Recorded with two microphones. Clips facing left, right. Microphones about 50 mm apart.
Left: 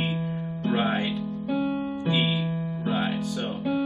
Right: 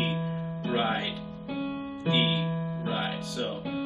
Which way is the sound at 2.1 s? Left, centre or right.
Centre.